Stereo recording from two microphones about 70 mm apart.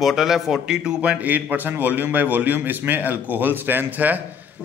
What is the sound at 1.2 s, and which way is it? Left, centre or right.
A man's voice, right.